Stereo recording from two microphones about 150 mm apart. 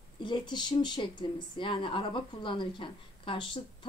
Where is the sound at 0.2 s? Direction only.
30° left (ahead or behind).